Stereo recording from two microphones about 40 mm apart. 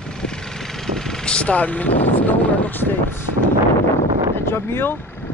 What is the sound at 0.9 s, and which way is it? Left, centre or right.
Vehicle, left.